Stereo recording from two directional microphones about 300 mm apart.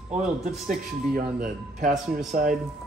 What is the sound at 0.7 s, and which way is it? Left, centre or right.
Speech, right.